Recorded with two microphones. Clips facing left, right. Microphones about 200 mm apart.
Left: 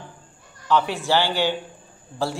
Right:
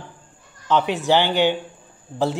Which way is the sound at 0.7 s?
20° right (ahead or behind).